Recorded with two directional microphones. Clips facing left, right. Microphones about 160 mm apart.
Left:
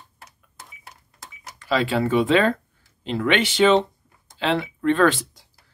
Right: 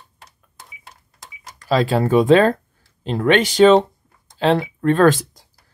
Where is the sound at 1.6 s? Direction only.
40° right (ahead or behind).